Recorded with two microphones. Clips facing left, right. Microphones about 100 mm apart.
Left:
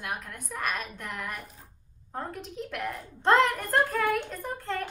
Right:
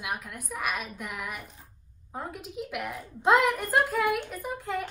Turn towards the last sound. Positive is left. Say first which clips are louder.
# right 1 dB
turn(degrees=-10)  # may be behind; listen again after turning